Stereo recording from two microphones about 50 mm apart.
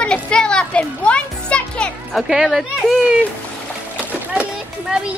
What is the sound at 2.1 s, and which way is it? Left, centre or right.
Speech, centre.